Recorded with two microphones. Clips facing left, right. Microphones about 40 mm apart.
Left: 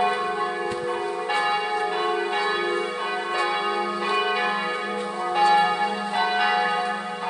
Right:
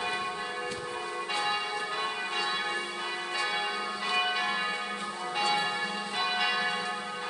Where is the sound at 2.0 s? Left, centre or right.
Centre.